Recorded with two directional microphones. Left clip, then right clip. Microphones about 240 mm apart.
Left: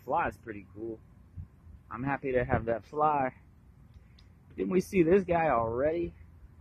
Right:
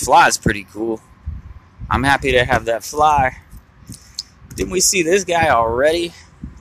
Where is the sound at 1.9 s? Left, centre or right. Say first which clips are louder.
Right 17 dB; right.